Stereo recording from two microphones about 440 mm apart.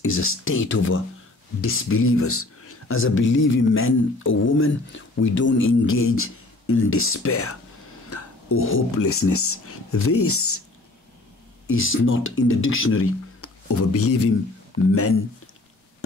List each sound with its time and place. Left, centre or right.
0.0 s speech: left
11.6 s speech: left